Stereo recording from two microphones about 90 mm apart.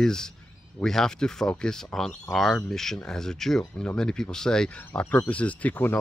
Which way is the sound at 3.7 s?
20° left (ahead or behind).